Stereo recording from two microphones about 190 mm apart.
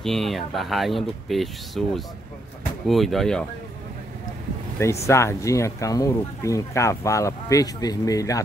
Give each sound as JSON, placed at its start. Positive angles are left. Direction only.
{"t": 0.0, "sound": "speech", "side_deg": 0}
{"t": 5.0, "sound": "speech", "side_deg": 15}